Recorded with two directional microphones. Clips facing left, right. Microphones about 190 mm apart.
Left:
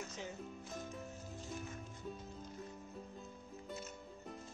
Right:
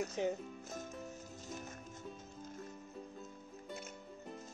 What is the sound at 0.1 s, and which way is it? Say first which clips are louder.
Speech: right 9 dB; 45° right (ahead or behind).